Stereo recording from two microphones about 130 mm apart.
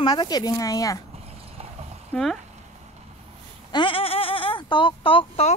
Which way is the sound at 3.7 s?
40° left (ahead or behind).